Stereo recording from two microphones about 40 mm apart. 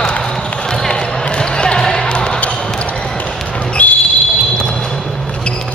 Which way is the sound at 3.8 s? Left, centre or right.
Left.